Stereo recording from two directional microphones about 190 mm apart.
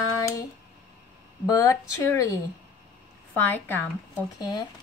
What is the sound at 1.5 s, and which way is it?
Speech, 15° left (ahead or behind).